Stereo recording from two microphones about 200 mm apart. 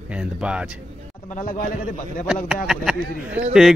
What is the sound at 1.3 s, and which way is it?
Speech, 40° left (ahead or behind).